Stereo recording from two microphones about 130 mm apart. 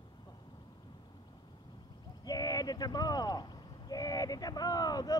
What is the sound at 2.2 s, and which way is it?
Speech, 30° left (ahead or behind).